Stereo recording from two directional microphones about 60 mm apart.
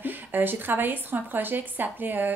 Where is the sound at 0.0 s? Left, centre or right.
Right.